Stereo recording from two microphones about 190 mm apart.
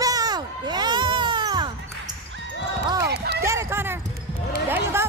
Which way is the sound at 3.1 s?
60° right (ahead or behind).